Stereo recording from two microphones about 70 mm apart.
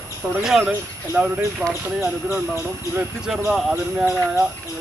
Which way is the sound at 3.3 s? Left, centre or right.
Centre.